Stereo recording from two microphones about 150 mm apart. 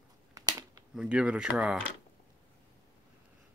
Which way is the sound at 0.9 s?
5° right (ahead or behind).